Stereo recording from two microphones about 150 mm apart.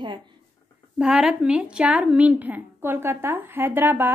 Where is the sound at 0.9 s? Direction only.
5° right (ahead or behind).